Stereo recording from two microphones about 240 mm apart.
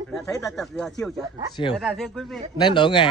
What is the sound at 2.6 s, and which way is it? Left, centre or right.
Speech, centre.